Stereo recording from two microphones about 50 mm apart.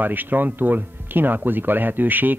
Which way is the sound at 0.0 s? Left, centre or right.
Right.